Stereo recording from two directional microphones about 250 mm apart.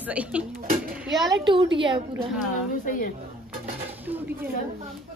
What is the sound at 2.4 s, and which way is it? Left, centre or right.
Speech, left.